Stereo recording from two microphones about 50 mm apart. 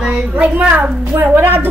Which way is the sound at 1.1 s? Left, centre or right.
Right.